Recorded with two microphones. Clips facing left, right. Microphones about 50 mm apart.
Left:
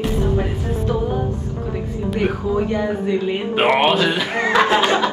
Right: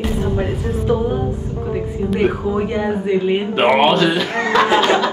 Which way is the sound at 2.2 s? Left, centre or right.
Right.